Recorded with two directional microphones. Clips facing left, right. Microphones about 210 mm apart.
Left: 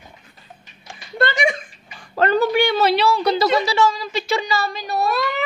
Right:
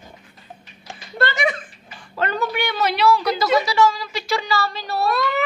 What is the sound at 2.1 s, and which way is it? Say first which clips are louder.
A woman's voice: left 6 dB; 35° left (ahead or behind).